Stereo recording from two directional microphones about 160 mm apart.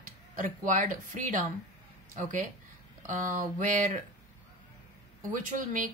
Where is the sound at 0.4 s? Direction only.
55° right (ahead or behind).